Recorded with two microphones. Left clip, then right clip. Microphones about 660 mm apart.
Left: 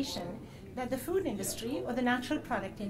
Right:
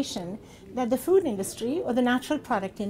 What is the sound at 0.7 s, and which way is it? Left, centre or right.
A woman's voice, right.